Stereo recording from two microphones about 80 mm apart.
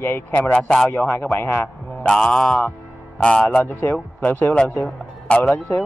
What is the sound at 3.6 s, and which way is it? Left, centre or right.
Speech, left.